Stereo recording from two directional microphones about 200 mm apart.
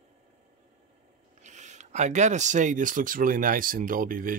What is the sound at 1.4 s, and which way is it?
Speech, 35° right (ahead or behind).